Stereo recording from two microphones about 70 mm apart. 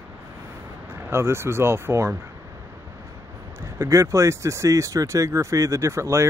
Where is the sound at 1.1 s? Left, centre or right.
Right.